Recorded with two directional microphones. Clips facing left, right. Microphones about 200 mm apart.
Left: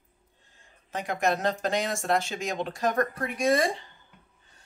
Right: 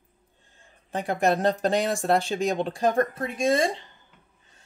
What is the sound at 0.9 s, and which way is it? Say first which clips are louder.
Speech: right 4 dB; 30° right (ahead or behind).